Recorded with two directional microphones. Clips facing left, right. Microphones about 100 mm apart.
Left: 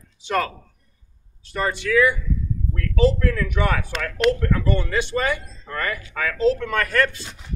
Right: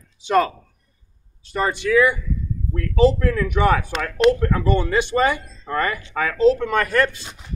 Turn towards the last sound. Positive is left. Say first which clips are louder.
# right 2 dB
turn(degrees=-20)  # may be behind; listen again after turning